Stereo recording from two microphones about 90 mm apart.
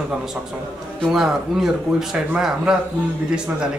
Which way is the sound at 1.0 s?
5° right (ahead or behind).